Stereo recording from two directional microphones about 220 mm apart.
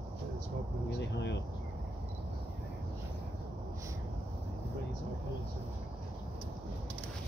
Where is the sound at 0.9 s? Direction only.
50° left (ahead or behind).